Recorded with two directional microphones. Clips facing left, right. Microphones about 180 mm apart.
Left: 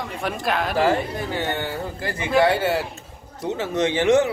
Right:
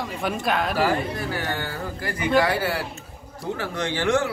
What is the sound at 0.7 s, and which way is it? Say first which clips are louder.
Speech: left 2 dB; 25° left (ahead or behind).